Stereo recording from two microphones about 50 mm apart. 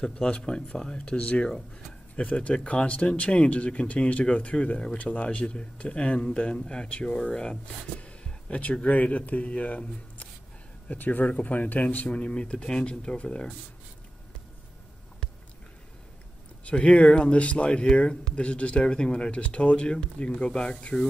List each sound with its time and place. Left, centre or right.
0.0 s speech: centre
4.9 s speech: left
12.1 s speech: left
16.6 s speech: left